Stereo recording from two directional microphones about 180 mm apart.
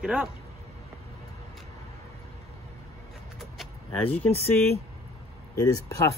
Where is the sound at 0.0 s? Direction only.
5° right (ahead or behind).